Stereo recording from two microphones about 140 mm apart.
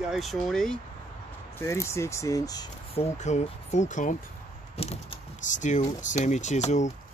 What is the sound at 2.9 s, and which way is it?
Speech, 55° left (ahead or behind).